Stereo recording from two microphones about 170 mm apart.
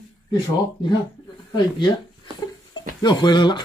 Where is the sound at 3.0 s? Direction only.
25° left (ahead or behind).